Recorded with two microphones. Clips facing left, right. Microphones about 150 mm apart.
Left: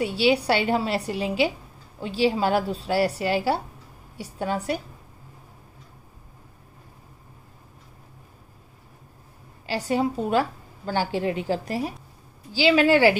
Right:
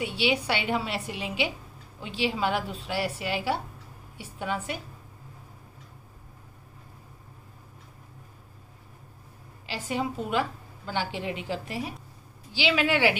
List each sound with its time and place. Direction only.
0.0 s a woman's voice: 40° left (ahead or behind)
9.8 s a woman's voice: 40° left (ahead or behind)